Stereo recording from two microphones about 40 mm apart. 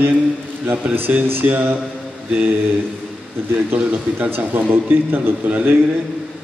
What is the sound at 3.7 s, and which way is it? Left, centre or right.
A man's voice, right.